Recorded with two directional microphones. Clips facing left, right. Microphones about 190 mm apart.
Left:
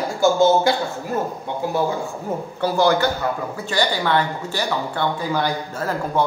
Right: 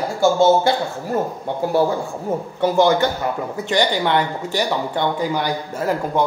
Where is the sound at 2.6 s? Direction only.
20° right (ahead or behind).